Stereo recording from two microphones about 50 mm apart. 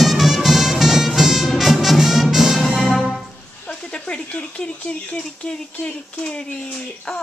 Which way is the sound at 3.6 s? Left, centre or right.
Left.